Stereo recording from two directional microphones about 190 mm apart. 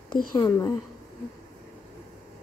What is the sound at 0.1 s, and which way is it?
Speech, 15° left (ahead or behind).